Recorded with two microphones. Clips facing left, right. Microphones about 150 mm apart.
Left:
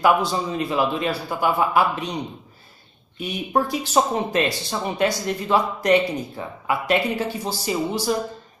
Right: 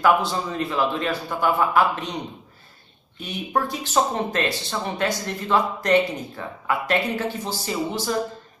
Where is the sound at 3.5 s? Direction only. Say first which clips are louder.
Left 3 dB; 15° left (ahead or behind).